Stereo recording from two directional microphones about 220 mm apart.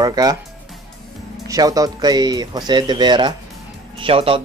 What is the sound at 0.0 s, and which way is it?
Speech, 15° right (ahead or behind).